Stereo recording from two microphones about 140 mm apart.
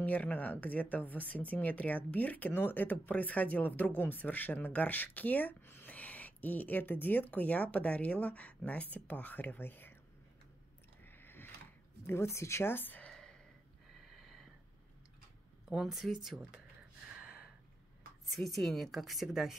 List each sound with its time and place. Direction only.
0.0 s speech: 10° left (ahead or behind)
11.1 s a sound: 15° left (ahead or behind)
12.1 s a woman's voice: 20° left (ahead or behind)
14.0 s a sound: centre (ahead or behind)
15.7 s a woman's voice: centre (ahead or behind)
17.1 s gasp: 5° right (ahead or behind)
18.3 s a woman's voice: centre (ahead or behind)